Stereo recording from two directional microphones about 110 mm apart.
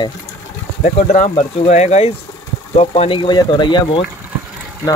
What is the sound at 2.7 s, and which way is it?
Speech, 65° left (ahead or behind).